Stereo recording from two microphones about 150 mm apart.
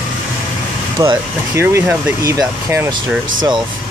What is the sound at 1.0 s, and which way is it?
Speech, 20° right (ahead or behind).